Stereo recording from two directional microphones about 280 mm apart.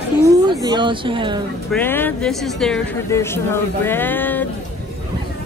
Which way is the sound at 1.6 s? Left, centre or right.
Centre.